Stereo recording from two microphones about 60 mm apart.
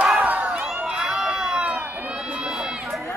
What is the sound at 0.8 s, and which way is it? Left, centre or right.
Run, centre.